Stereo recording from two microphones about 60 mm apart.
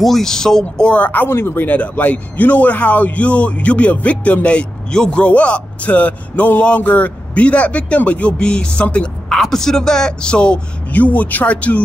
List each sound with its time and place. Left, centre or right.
0.0 s a man's voice: centre
0.8 s speech: left
1.7 s a man's voice: left
9.3 s a man's voice: centre; by 11.8 s left